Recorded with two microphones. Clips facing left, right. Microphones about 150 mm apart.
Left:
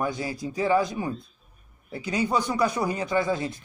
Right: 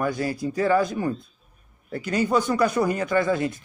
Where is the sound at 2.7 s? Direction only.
25° left (ahead or behind).